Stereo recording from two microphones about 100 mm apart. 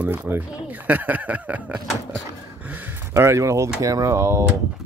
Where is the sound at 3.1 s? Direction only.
30° right (ahead or behind).